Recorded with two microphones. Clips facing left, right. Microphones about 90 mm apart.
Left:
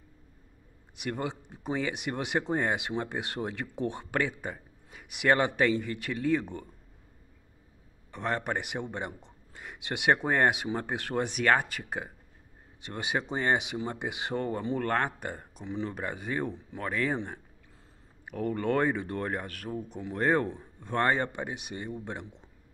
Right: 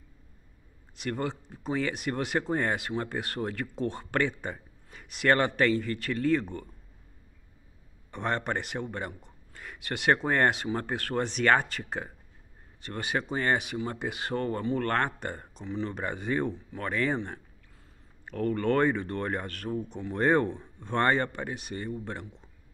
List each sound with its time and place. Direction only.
0.9 s a man's voice: 15° left (ahead or behind)
4.2 s a man's voice: 5° left (ahead or behind)
8.1 s a man's voice: centre (ahead or behind)
18.2 s a man's voice: 15° left (ahead or behind)
21.2 s a man's voice: 15° left (ahead or behind)